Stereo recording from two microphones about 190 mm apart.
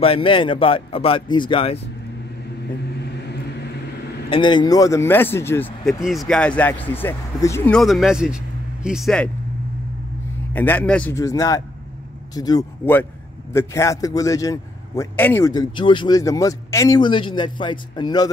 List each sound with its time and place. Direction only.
0.0 s a man's voice: 30° left (ahead or behind)
4.3 s a man's voice: 25° left (ahead or behind)
5.9 s speech: centre (ahead or behind)
10.5 s a man's voice: 10° left (ahead or behind)